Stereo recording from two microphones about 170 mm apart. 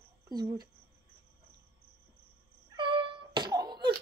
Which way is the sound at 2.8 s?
30° right (ahead or behind).